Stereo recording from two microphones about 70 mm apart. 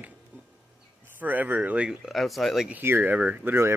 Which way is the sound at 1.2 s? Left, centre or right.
Right.